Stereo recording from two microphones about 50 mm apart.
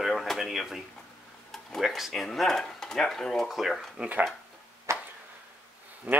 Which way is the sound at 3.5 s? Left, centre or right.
Centre.